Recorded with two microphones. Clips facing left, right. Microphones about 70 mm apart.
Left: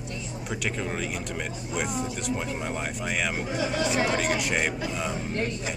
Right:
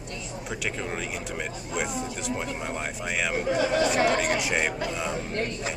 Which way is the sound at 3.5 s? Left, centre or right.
Right.